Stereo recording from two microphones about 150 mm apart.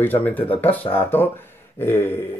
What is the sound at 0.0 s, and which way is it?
Speech, 10° left (ahead or behind).